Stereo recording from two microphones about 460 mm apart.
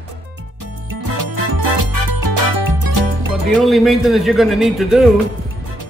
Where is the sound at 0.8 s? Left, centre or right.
Right.